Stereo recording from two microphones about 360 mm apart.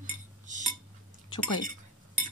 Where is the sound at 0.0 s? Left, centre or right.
Right.